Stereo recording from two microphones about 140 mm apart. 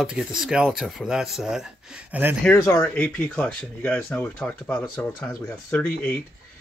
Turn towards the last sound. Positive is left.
turn(degrees=5)  # may be behind; listen again after turning